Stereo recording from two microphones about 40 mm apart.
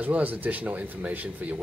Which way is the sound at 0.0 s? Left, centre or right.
Right.